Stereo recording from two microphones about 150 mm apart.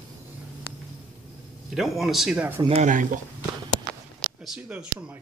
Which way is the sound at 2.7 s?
50° right (ahead or behind).